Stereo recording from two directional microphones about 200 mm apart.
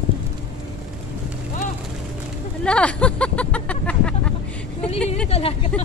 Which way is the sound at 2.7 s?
5° left (ahead or behind).